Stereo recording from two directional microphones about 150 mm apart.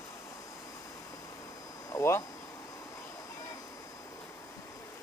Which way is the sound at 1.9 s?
20° left (ahead or behind).